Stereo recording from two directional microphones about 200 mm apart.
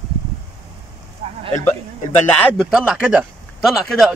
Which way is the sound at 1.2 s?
30° right (ahead or behind).